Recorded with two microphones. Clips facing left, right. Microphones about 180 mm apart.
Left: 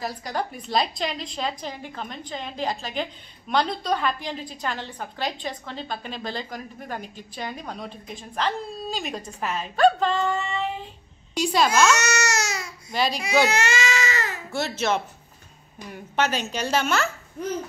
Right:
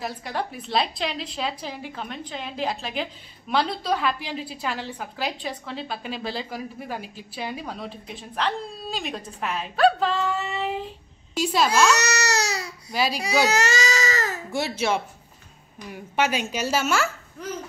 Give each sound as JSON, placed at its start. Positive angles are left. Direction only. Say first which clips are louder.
{"t": 0.0, "sound": "a woman's voice", "louder": "left 1 dB", "side_deg": 0}
{"t": 12.0, "sound": "baby cry", "louder": "even", "side_deg": -35}
{"t": 12.9, "sound": "a woman's voice", "louder": "even", "side_deg": -5}
{"t": 13.5, "sound": "speech", "louder": "right 1 dB", "side_deg": -40}
{"t": 14.5, "sound": "speech", "louder": "even", "side_deg": -10}